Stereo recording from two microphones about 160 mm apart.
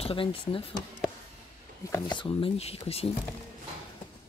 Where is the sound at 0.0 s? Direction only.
35° left (ahead or behind).